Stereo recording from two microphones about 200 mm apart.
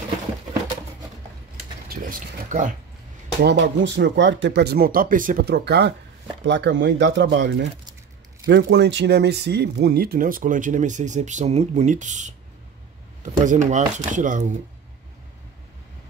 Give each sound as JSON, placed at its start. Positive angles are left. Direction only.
{"t": 1.9, "sound": "speech", "side_deg": -45}
{"t": 3.4, "sound": "speech", "side_deg": -60}